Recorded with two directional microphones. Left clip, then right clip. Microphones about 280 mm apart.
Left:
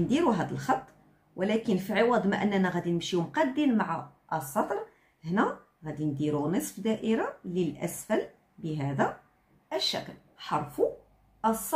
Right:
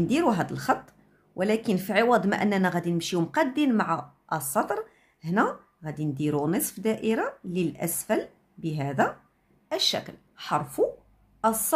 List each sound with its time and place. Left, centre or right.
0.1 s speech: right